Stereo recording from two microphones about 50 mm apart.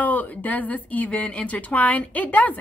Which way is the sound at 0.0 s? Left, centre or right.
Left.